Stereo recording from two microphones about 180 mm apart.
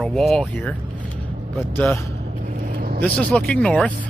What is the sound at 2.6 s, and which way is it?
Vehicle, 50° right (ahead or behind).